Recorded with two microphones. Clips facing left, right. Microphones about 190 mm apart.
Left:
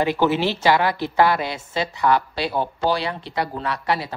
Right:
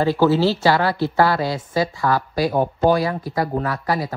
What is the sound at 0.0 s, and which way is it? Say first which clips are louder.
A woman's voice: right 3 dB; 20° left (ahead or behind).